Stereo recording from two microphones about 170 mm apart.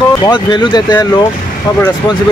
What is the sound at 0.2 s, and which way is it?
Speech, 25° left (ahead or behind).